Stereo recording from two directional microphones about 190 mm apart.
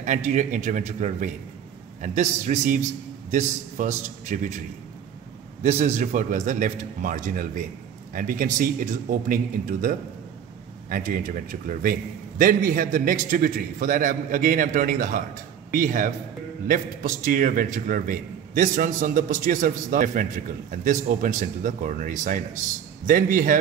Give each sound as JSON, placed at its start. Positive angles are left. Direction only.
{"t": 0.0, "sound": "a man's voice", "side_deg": -40}
{"t": 5.6, "sound": "a man's voice", "side_deg": -35}
{"t": 17.3, "sound": "a man's voice", "side_deg": -45}